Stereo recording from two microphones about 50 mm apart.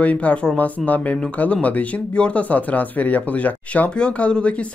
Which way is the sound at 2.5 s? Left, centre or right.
Left.